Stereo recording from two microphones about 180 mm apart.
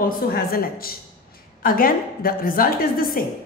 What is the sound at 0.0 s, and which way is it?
A woman's voice, 55° left (ahead or behind).